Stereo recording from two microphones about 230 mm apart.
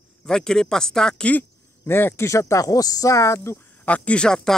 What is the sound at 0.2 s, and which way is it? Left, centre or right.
A man's voice, centre.